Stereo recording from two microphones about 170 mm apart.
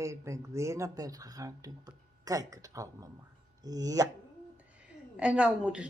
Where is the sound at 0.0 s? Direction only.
15° right (ahead or behind).